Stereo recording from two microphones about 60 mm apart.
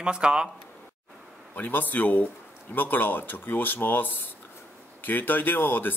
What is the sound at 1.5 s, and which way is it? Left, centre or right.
Speech, left.